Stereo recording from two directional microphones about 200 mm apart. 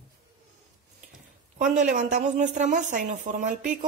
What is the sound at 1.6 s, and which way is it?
A woman's voice, 40° right (ahead or behind).